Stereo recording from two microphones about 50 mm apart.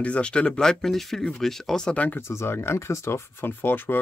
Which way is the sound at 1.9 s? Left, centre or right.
Left.